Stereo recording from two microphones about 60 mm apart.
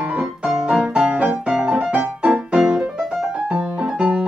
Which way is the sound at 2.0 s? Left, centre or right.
Right.